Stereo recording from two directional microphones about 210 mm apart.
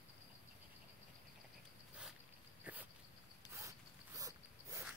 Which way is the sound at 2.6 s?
10° right (ahead or behind).